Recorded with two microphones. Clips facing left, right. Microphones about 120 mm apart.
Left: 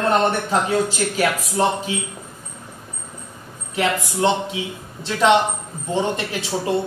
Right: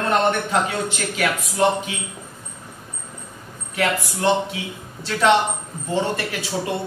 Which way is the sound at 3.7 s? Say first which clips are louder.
Left 1 dB; 20° left (ahead or behind).